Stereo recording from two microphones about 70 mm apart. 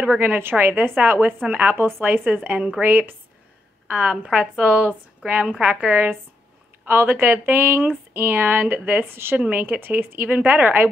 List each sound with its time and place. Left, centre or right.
0.2 s a woman's voice: right
6.9 s a woman's voice: right